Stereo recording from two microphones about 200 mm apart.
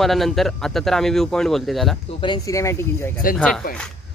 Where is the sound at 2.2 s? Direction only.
20° left (ahead or behind).